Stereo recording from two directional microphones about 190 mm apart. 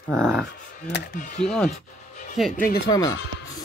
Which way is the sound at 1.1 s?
40° left (ahead or behind).